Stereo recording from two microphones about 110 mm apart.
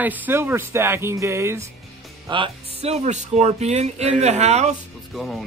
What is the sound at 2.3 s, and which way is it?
Speech, 45° right (ahead or behind).